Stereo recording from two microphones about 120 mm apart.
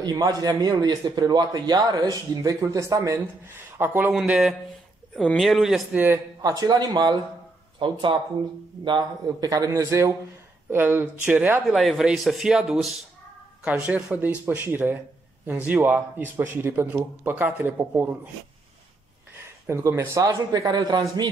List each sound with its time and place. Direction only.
0.0 s a man's voice: 30° right (ahead or behind)
4.1 s speech: 5° right (ahead or behind)
5.9 s a man's voice: 15° right (ahead or behind)
6.4 s a man's voice: 30° right (ahead or behind); by 11.6 s 15° right (ahead or behind)
11.6 s speech: centre (ahead or behind)
13.7 s a man's voice: 10° right (ahead or behind)
19.6 s speech: 20° right (ahead or behind)